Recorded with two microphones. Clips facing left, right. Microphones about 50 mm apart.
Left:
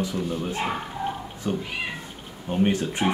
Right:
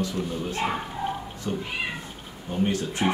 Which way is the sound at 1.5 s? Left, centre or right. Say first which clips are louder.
Left 1 dB; centre.